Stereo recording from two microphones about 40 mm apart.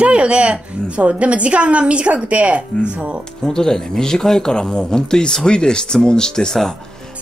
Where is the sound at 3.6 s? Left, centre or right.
Centre.